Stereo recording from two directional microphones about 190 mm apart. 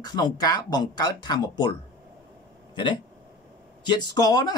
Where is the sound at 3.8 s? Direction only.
20° left (ahead or behind).